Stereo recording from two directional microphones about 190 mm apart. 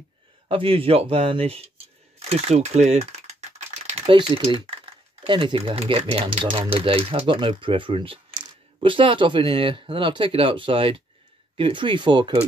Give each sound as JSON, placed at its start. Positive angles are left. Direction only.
{"t": 0.5, "sound": "speech", "side_deg": -30}
{"t": 2.2, "sound": "typing", "side_deg": -35}
{"t": 4.0, "sound": "speech", "side_deg": -25}